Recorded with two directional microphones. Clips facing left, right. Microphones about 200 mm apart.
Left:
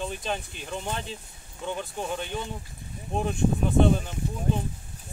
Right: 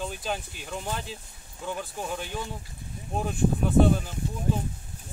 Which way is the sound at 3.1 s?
5° right (ahead or behind).